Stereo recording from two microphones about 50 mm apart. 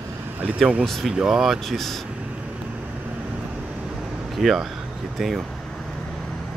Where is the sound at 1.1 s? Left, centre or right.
Centre.